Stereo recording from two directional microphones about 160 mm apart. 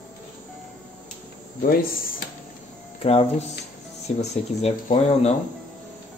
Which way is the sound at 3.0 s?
40° left (ahead or behind).